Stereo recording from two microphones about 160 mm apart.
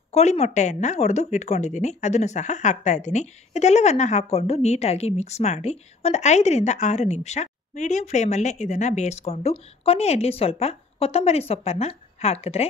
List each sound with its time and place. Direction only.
0.1 s speech: 45° left (ahead or behind)